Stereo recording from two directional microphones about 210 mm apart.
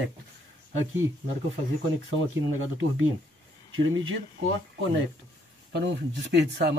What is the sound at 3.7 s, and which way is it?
Speech, 70° right (ahead or behind).